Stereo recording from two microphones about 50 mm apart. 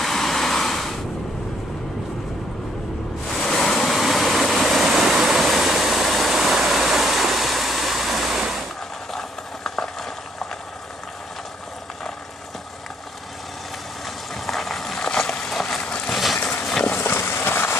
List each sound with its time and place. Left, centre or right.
0.0 s vehicle: centre
3.3 s waves: centre
9.1 s a sound: centre
14.3 s a sound: centre
16.1 s vehicle: centre
16.9 s vehicle: left